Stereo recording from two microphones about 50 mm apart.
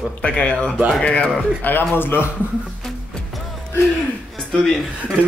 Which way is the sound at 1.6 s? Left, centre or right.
Left.